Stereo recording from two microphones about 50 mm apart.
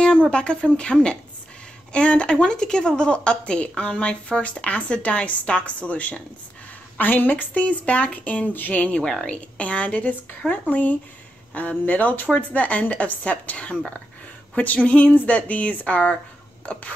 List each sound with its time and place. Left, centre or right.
0.0 s speech: centre